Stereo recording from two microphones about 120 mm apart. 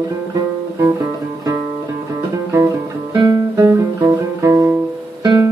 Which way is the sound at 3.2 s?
30° right (ahead or behind).